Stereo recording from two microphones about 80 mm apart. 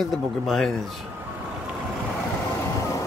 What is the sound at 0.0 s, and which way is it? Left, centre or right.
Speech, centre.